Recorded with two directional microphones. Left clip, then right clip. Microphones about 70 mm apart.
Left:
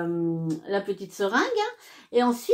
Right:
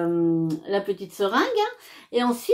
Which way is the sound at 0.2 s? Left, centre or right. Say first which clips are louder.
Right 5 dB; right.